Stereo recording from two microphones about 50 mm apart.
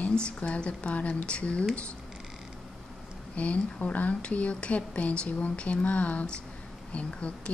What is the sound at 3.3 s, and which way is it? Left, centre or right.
Speech, left.